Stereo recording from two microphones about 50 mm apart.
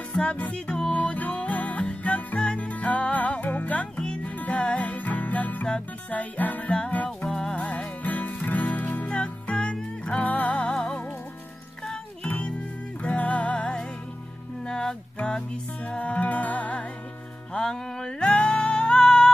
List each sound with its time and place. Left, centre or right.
0.1 s music: left
0.9 s music: left
7.2 s music: centre
7.5 s music: left
9.1 s music: left
10.7 s music: centre
12.3 s music: left
15.1 s music: left
17.6 s music: centre